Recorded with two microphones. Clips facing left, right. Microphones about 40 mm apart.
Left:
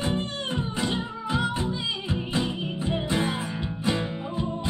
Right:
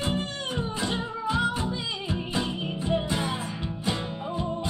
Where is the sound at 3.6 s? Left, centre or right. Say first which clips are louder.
Left 5 dB; centre.